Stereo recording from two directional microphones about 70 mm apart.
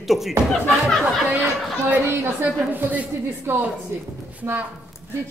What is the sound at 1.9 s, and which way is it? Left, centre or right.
Speech, right.